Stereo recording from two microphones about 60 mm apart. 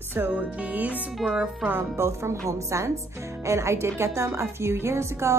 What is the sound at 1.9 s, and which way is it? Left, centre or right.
A woman's voice, right.